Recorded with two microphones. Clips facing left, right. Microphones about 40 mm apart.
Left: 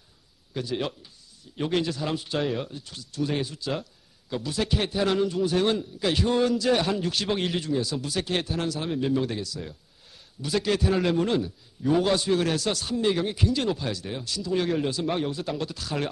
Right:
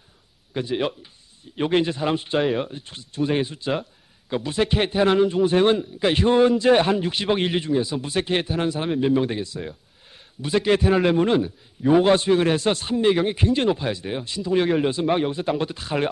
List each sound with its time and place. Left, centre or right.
0.5 s a man's voice: right